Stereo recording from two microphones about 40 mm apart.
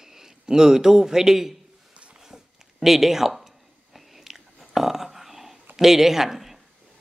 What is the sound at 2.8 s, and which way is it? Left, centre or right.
Chewing, centre.